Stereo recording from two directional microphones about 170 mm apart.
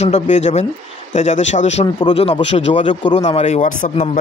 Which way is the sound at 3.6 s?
50° left (ahead or behind).